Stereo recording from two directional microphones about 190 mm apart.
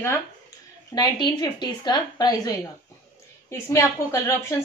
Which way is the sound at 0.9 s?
20° left (ahead or behind).